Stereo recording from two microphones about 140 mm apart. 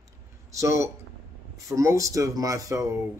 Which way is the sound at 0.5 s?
20° right (ahead or behind).